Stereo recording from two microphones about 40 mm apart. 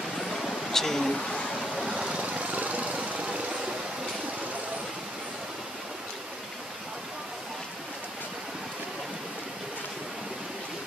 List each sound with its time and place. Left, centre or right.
0.2 s a sound: centre
1.6 s vehicle: centre
2.0 s vehicle: right
2.2 s vehicle: right
2.9 s vehicle: right